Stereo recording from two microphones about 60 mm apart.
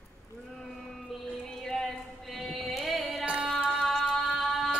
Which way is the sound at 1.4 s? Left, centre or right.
Centre.